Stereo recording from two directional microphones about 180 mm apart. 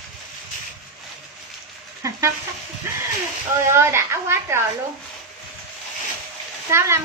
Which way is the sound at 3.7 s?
15° right (ahead or behind).